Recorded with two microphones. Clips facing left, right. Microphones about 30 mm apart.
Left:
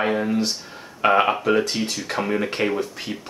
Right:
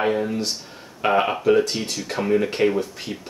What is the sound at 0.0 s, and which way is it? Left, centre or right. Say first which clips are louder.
Speech: left 1 dB; centre.